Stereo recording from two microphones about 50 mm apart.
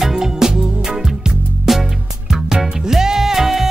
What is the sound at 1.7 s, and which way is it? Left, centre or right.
Music, centre.